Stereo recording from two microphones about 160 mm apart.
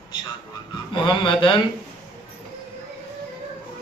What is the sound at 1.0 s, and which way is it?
Speech, 30° left (ahead or behind).